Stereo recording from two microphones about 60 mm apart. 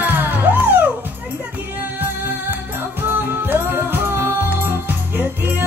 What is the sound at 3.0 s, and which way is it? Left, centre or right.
Music, right.